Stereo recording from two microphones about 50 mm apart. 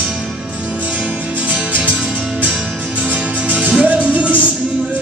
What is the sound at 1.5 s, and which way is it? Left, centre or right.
Music, right.